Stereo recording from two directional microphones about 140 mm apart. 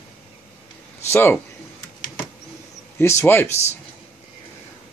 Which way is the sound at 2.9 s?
20° left (ahead or behind).